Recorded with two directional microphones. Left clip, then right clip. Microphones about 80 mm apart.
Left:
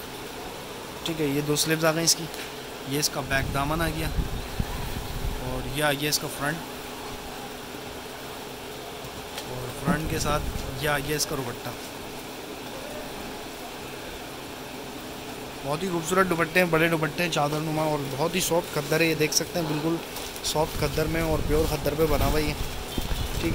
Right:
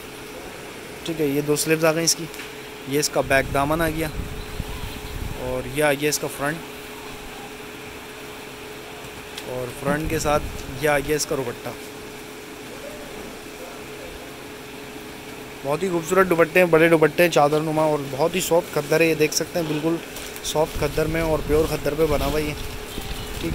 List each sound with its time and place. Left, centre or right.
1.0 s speech: centre
5.8 s speech: centre
9.8 s speech: centre
10.8 s speech: centre
15.7 s speech: centre
17.9 s speech: centre
21.6 s speech: centre
21.9 s speech: centre